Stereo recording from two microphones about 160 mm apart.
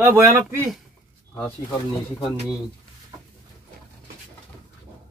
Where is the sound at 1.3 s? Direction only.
10° left (ahead or behind).